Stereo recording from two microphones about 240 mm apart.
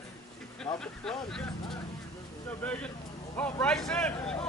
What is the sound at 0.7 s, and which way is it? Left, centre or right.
Speech, centre.